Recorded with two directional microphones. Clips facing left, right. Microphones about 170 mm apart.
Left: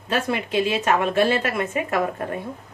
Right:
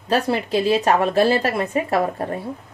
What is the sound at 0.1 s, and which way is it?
A woman's voice, 35° right (ahead or behind).